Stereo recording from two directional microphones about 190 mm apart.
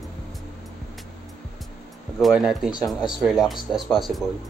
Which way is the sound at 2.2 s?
Centre (ahead or behind).